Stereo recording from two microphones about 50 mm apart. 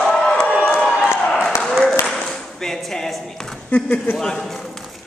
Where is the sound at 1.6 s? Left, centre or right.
Centre.